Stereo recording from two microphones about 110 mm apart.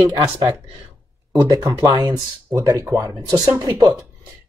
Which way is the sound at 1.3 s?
30° right (ahead or behind).